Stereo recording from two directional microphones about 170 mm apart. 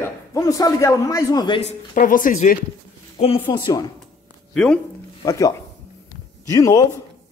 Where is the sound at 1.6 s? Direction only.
45° left (ahead or behind).